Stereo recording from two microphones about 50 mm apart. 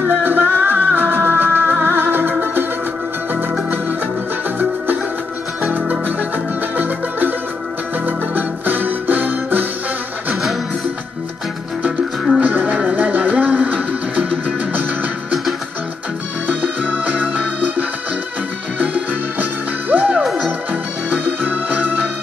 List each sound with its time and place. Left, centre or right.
0.1 s music: right
5.7 s music: right
12.4 s music: right
16.4 s organ: right
19.9 s music: right